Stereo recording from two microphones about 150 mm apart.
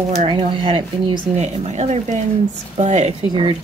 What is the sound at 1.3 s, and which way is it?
Speech, 45° right (ahead or behind).